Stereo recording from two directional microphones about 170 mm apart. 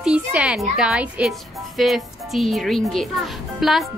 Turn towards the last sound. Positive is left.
turn(degrees=0)  # may be behind; listen again after turning